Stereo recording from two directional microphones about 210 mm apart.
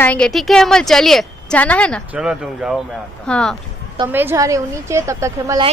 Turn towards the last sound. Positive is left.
turn(degrees=-15)  # may be behind; listen again after turning